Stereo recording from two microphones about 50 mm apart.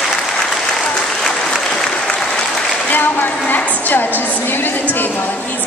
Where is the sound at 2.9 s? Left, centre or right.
Left.